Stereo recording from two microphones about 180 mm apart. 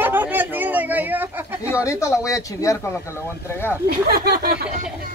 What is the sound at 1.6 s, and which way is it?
Speech, 15° left (ahead or behind).